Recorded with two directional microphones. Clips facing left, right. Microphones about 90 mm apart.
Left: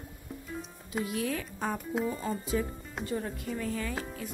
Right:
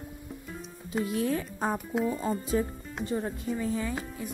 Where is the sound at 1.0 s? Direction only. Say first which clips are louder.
Right 4 dB; 30° right (ahead or behind).